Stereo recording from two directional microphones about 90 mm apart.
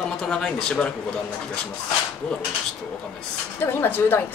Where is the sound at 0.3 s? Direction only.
10° left (ahead or behind).